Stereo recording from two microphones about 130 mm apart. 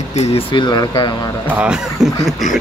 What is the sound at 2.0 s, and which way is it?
Speech, 5° right (ahead or behind).